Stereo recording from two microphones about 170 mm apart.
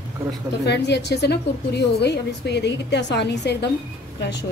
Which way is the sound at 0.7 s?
80° left.